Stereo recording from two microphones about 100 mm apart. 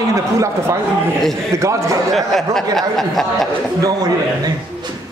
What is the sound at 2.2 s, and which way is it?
Speech, 5° left (ahead or behind).